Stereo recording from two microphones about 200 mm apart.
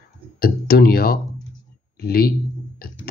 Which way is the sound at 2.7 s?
50° left (ahead or behind).